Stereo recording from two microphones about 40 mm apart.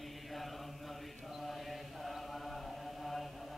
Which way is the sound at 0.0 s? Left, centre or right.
Centre.